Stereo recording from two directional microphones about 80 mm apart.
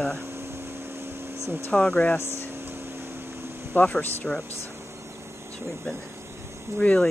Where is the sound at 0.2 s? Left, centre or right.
Right.